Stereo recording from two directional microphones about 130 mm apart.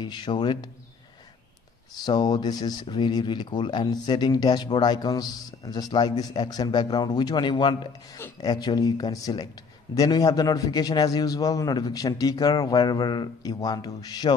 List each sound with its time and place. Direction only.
0.0 s speech: 35° left (ahead or behind)
2.0 s speech: 35° left (ahead or behind)